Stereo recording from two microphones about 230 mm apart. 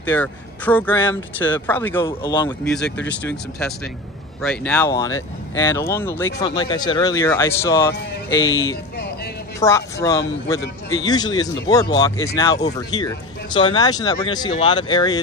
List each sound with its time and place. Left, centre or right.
0.1 s speech: centre
2.0 s speech: centre
4.4 s speech: centre
8.4 s speech: left
9.6 s speech: centre